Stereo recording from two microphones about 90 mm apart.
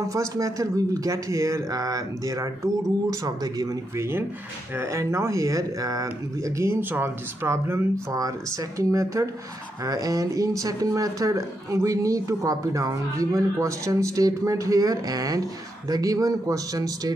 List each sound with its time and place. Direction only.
0.1 s speech: 35° right (ahead or behind)
3.9 s speech: 30° right (ahead or behind)
8.2 s speech: 40° right (ahead or behind)